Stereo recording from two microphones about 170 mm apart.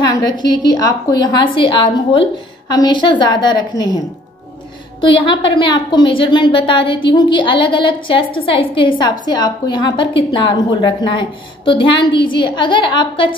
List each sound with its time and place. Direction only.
0.0 s a woman's voice: 25° left (ahead or behind)
5.0 s a woman's voice: 30° left (ahead or behind)